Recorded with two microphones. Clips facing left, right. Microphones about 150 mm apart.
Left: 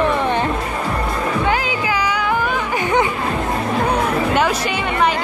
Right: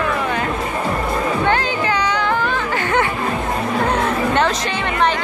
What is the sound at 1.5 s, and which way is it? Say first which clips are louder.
Chatter: right 1 dB; 5° left (ahead or behind).